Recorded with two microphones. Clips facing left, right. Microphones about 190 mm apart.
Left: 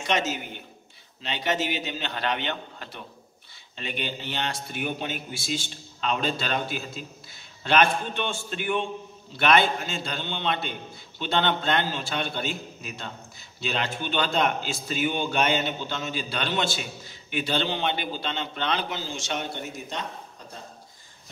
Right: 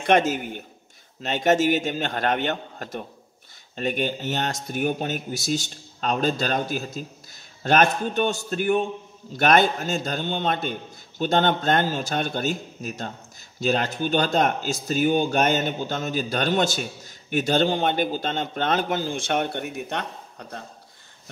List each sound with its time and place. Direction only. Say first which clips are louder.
0.0 s speech: right 7 dB; 55° right (ahead or behind)